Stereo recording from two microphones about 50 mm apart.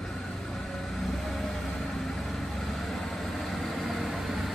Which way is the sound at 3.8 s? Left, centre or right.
Centre.